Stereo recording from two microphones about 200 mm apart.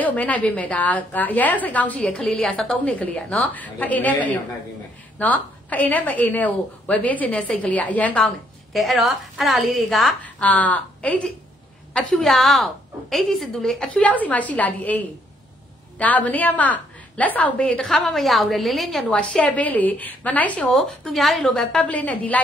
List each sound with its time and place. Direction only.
0.0 s a woman's voice: 10° left (ahead or behind)